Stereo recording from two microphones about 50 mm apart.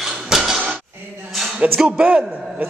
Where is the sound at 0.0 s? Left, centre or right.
Centre.